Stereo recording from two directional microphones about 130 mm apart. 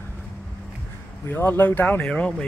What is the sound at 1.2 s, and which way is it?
Speech, 15° left (ahead or behind).